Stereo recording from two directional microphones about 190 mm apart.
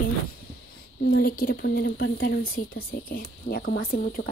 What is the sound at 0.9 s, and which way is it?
Speech, 60° left (ahead or behind).